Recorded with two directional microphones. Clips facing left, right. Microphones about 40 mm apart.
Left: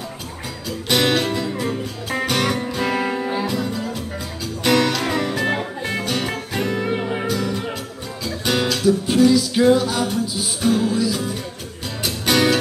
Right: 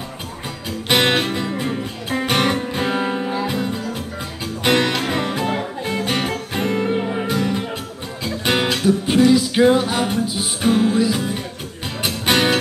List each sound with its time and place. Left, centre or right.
0.8 s music: right